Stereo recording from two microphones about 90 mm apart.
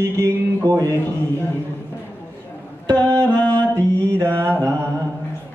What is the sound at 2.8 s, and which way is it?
Music, 15° left (ahead or behind).